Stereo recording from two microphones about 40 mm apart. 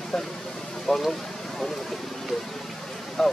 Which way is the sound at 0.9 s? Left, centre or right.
Centre.